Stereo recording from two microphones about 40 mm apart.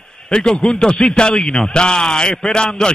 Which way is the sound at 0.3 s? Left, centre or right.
Centre.